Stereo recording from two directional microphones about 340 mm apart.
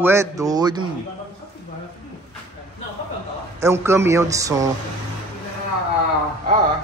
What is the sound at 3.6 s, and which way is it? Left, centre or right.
A man's voice, centre.